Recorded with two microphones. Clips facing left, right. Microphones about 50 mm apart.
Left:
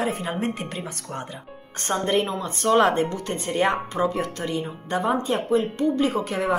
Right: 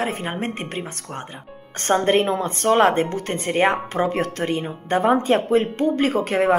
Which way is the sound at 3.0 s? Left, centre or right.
Right.